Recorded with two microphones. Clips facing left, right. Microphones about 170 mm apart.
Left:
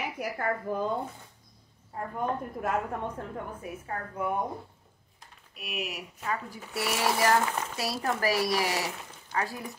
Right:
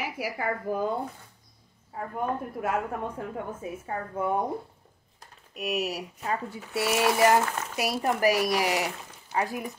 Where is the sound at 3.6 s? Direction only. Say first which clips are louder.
Right 3 dB; 25° right (ahead or behind).